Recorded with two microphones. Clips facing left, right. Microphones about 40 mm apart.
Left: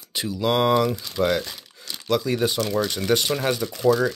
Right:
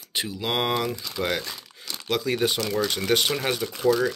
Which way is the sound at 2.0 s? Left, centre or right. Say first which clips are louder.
Left 2 dB; right.